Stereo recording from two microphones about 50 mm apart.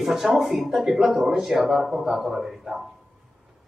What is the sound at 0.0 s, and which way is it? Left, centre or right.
Speech, centre.